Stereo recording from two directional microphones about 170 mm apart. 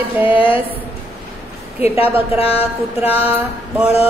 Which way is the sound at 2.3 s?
35° left (ahead or behind).